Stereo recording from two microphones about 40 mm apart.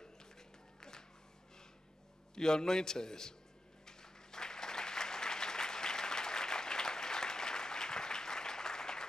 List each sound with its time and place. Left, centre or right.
0.0 s a sound: centre
2.3 s a man's voice: centre
3.8 s applause: centre